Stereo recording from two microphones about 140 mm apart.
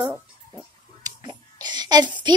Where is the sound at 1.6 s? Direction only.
30° right (ahead or behind).